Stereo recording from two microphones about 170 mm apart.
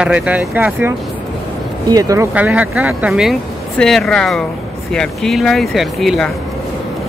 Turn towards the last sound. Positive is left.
turn(degrees=0)  # may be behind; listen again after turning